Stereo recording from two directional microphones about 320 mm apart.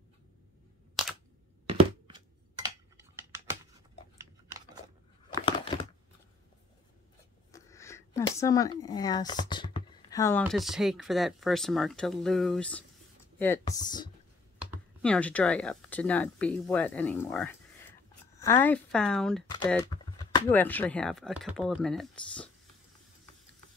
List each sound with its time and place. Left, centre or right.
1.7 s computer keyboard: centre
7.5 s a sound: centre
10.4 s speech: centre
14.6 s speech: centre